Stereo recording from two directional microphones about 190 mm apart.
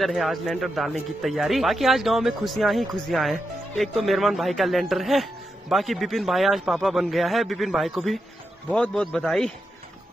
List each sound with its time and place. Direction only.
0.0 s speech: centre (ahead or behind)